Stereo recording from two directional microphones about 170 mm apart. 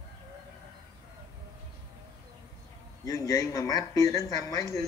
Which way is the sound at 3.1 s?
20° left (ahead or behind).